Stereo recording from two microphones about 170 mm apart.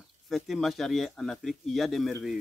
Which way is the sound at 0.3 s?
Centre (ahead or behind).